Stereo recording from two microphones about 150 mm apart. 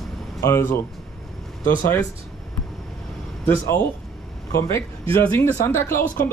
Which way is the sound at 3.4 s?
15° left (ahead or behind).